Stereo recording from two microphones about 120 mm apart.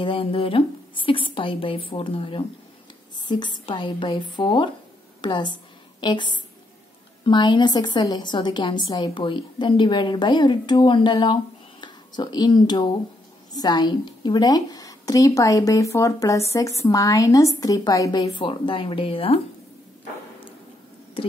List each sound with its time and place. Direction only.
0.0 s a woman's voice: 50° left (ahead or behind); by 18.3 s 30° left (ahead or behind)
18.4 s a woman's voice: 45° left (ahead or behind)